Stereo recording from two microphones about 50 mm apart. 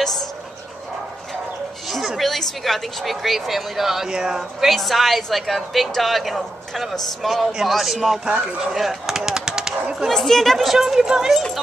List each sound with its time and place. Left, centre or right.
1.9 s speech: centre
8.3 s speech: centre
8.7 s speech: centre
10.0 s speech: centre